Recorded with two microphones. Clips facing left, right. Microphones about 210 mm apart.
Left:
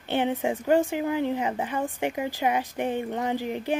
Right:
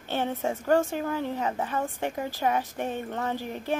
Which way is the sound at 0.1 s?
15° left (ahead or behind).